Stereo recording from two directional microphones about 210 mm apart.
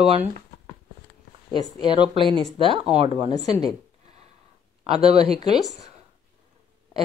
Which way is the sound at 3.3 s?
20° left (ahead or behind).